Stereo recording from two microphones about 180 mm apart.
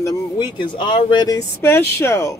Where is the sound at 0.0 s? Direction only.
25° left (ahead or behind).